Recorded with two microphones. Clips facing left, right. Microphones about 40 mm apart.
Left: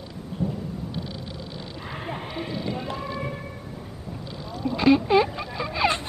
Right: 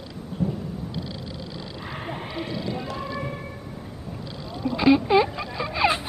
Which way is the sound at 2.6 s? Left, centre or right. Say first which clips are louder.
Even; left.